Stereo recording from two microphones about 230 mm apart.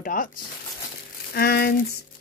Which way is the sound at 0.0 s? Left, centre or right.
Left.